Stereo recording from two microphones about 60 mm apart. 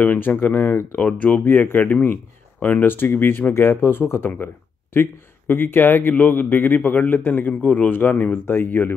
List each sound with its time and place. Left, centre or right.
0.0 s a man's voice: left
5.5 s a man's voice: left